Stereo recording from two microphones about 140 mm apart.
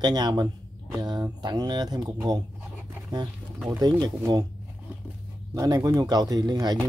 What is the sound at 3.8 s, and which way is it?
Speech, 30° right (ahead or behind).